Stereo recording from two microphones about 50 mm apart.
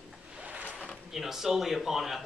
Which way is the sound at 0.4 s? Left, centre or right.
Right.